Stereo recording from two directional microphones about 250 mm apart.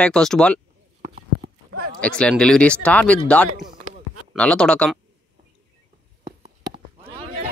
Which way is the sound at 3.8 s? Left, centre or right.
Right.